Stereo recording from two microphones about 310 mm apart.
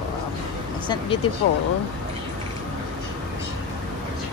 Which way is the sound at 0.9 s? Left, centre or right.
Centre.